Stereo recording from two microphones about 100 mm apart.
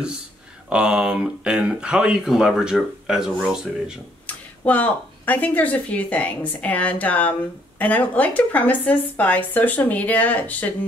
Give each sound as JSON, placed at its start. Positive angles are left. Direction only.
{"t": 0.7, "sound": "speech", "side_deg": -10}
{"t": 4.3, "sound": "a woman's voice", "side_deg": 15}